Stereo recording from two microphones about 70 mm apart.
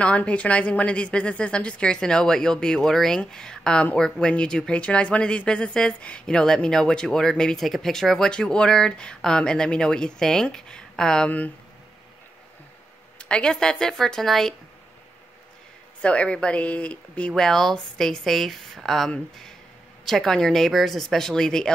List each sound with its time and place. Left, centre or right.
0.0 s speech: centre
11.2 s speech: left
13.2 s speech: centre
16.0 s speech: centre